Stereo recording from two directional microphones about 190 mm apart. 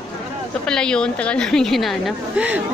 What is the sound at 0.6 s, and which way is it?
A woman's voice, 5° left (ahead or behind).